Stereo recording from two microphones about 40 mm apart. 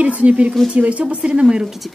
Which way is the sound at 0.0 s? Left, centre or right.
Right.